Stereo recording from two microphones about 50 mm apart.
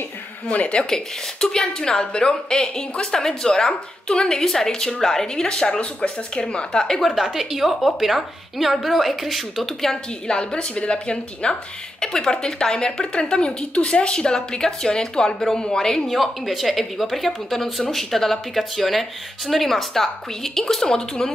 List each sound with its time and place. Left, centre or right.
0.5 s a woman's voice: left
0.8 s a woman's voice: centre
7.0 s a woman's voice: centre
10.2 s a woman's voice: centre
16.1 s a woman's voice: centre